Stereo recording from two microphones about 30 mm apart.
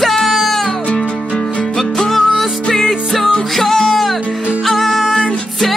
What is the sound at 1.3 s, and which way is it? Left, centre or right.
Music, left.